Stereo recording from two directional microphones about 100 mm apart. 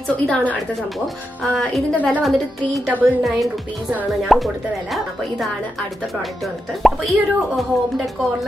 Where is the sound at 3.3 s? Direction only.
Centre (ahead or behind).